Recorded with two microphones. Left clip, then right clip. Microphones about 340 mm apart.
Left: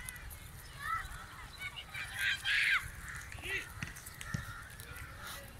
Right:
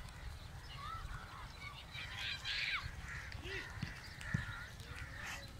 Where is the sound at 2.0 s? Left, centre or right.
Left.